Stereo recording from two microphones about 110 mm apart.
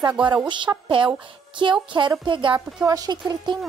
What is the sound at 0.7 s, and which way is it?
Speech, 25° right (ahead or behind).